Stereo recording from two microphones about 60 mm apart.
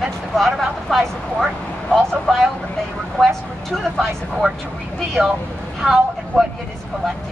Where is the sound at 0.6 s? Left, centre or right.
Centre.